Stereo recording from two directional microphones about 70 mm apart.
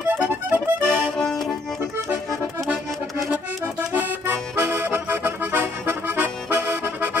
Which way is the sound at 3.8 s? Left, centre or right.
Right.